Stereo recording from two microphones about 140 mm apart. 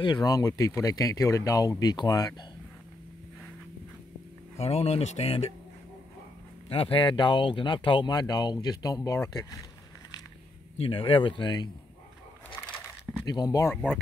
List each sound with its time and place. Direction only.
0.0 s speech: 30° left (ahead or behind)
4.6 s speech: 45° left (ahead or behind)
6.7 s speech: 40° left (ahead or behind); by 9.7 s 25° left (ahead or behind)
10.8 s speech: 40° left (ahead or behind)
13.2 s speech: 30° left (ahead or behind)